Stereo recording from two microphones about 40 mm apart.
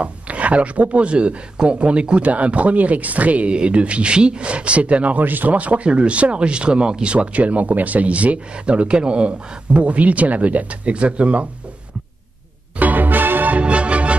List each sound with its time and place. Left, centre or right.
0.0 s speech: right
5.2 s speech: right
12.7 s music: right
13.6 s music: right